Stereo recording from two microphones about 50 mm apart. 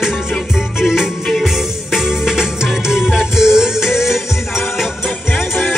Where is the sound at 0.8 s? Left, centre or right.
Centre.